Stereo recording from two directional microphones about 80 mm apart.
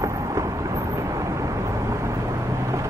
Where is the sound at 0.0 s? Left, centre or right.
Right.